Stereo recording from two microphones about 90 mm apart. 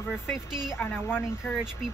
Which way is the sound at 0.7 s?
25° left (ahead or behind).